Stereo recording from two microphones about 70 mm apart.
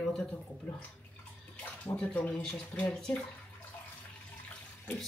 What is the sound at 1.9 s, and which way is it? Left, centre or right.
A woman's voice, centre.